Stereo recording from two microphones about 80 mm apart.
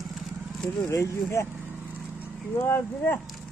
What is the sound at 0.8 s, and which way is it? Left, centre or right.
Speech, left.